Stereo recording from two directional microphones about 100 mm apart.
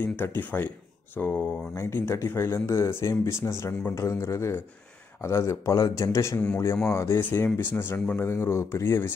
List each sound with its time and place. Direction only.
0.1 s a man's voice: 20° left (ahead or behind)